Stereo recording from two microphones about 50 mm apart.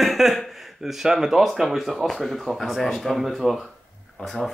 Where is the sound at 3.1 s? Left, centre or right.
Centre.